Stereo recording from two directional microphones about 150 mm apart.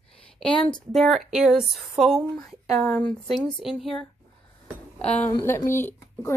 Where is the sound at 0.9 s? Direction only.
Centre (ahead or behind).